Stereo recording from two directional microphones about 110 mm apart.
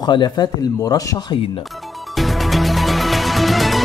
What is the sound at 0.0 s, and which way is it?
Speech, 40° left (ahead or behind).